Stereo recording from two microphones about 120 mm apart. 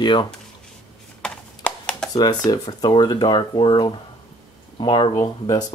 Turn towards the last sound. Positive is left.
turn(degrees=30)  # may be behind; listen again after turning